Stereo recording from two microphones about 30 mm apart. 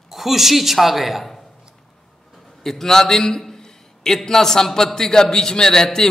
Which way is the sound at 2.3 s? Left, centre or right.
Centre.